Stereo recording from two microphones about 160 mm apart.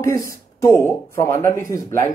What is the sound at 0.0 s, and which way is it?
Speech, 20° left (ahead or behind).